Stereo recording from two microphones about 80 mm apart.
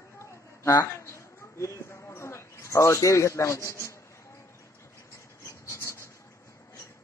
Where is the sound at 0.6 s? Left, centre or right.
Left.